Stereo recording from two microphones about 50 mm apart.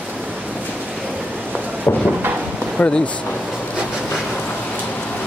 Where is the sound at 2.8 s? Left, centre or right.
Left.